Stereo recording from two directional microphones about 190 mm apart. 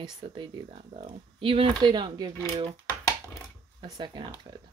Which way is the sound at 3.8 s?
25° right (ahead or behind).